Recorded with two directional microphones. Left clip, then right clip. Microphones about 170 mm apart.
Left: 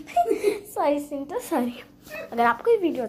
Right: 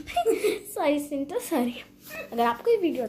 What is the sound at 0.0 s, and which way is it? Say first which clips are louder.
A woman's voice: left 2 dB; 10° right (ahead or behind).